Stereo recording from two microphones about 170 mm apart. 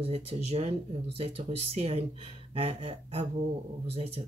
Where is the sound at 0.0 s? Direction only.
35° right (ahead or behind).